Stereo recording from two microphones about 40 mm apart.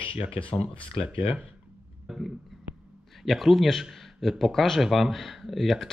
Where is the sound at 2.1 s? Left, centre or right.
Centre.